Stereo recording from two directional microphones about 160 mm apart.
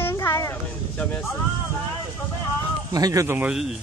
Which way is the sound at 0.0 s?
15° left (ahead or behind).